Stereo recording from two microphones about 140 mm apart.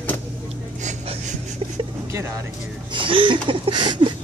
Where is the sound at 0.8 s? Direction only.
60° right (ahead or behind).